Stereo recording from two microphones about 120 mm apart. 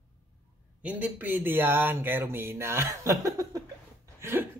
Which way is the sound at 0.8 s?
15° right (ahead or behind).